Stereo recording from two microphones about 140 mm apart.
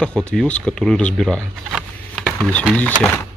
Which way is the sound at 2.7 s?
10° left (ahead or behind).